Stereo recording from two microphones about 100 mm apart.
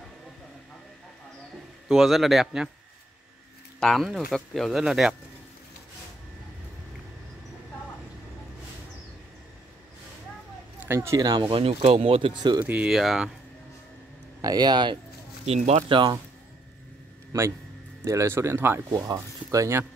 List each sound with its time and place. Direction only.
1.9 s speech: centre (ahead or behind)
3.8 s speech: centre (ahead or behind)
10.9 s speech: 30° right (ahead or behind)
11.5 s speech: 75° right (ahead or behind); by 12.6 s 55° right (ahead or behind)
12.6 s speech: 15° right (ahead or behind)
12.9 s speech: centre (ahead or behind)
14.4 s speech: 40° right (ahead or behind)
15.4 s speech: 90° right
17.3 s speech: 40° right (ahead or behind)
18.0 s speech: 30° right (ahead or behind)
18.9 s speech: 35° right (ahead or behind)